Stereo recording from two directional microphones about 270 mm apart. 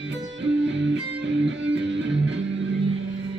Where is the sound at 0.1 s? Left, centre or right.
Right.